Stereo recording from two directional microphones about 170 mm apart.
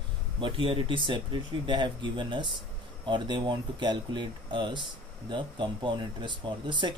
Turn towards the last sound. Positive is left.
turn(degrees=-30)  # may be behind; listen again after turning